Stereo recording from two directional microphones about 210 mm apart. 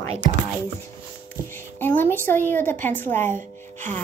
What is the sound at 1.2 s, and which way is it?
A woman's voice, 10° left (ahead or behind).